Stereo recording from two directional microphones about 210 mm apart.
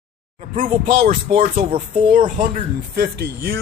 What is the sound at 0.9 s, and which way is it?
Speech, 35° right (ahead or behind).